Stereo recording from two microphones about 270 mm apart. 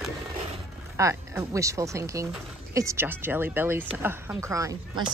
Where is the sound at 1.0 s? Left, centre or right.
Centre.